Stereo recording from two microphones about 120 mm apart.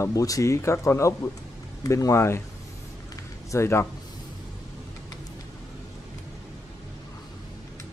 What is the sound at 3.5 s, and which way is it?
Speech, 20° left (ahead or behind).